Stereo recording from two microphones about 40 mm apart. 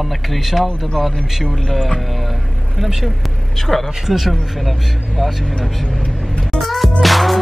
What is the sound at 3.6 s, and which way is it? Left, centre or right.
Speech, centre.